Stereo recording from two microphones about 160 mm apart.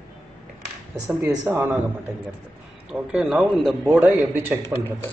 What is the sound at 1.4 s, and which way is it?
A man's voice, 15° right (ahead or behind).